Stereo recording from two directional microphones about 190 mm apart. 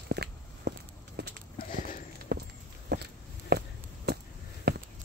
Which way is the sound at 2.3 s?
55° right (ahead or behind).